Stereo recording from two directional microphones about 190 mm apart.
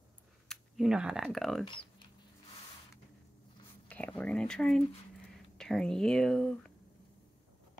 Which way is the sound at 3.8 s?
10° left (ahead or behind).